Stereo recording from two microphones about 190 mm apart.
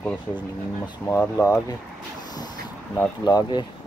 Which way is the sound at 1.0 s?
10° left (ahead or behind).